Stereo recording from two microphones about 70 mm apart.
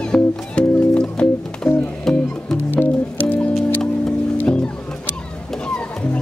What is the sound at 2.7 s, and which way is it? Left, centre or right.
Music, left.